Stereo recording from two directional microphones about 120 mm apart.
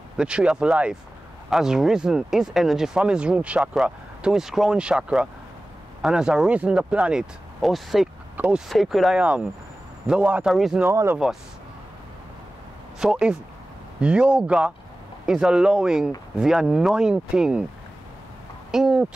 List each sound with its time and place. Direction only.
0.2 s speech: 10° right (ahead or behind)
8.6 s speech: centre (ahead or behind)
10.8 s speech: 20° right (ahead or behind)
13.0 s speech: 5° right (ahead or behind)
18.7 s speech: 5° right (ahead or behind)